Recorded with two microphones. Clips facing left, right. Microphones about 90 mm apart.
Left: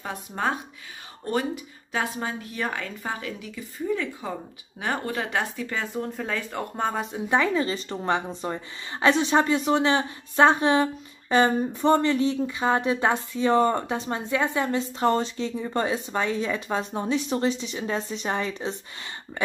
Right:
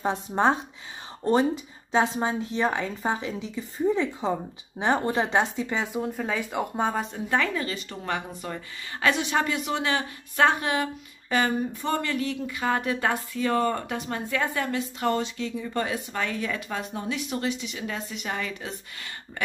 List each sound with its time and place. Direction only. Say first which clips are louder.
0.0 s speech: right 5 dB; 25° right (ahead or behind)
5.9 s speech: right 1 dB; 5° right (ahead or behind)
7.2 s speech: left 7 dB; 20° left (ahead or behind)